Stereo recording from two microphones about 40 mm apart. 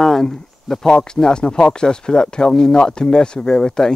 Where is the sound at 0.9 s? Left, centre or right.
Left.